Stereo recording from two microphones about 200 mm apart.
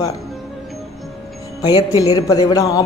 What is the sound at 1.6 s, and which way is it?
Speech, 20° left (ahead or behind).